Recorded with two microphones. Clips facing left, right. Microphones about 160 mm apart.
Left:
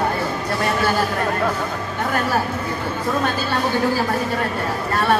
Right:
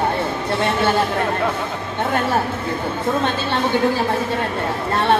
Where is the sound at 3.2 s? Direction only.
25° right (ahead or behind).